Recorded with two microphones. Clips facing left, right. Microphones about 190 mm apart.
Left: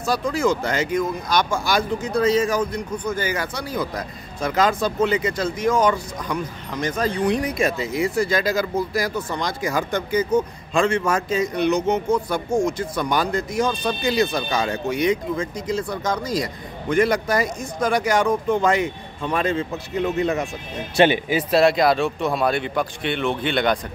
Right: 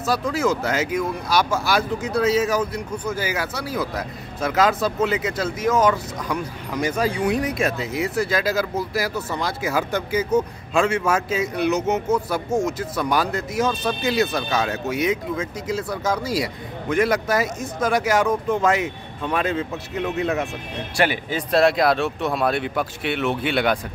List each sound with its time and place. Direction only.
0.0 s speech: 5° right (ahead or behind)
20.9 s speech: 20° left (ahead or behind)
21.3 s speech: 5° left (ahead or behind)